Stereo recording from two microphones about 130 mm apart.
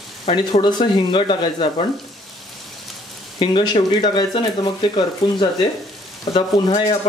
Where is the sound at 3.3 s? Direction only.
40° left (ahead or behind).